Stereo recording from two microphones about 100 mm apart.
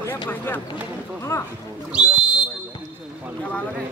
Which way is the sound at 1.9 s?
10° right (ahead or behind).